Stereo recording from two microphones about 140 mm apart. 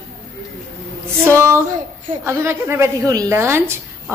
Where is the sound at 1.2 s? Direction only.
20° right (ahead or behind).